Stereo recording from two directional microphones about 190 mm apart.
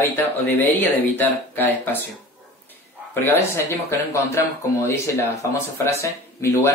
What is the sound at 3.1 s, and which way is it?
Speech, 10° left (ahead or behind).